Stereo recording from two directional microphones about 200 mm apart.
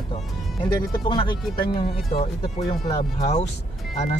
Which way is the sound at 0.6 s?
25° left (ahead or behind).